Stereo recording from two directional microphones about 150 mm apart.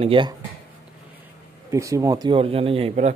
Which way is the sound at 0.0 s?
35° right (ahead or behind).